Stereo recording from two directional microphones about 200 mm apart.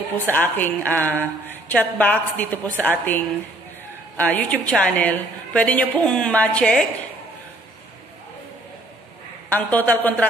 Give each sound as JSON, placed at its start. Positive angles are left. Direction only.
{"t": 0.2, "sound": "a woman's voice", "side_deg": 10}
{"t": 9.5, "sound": "a woman's voice", "side_deg": 10}